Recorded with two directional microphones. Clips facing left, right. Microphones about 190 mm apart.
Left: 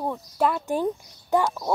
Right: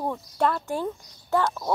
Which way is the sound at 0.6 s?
15° left (ahead or behind).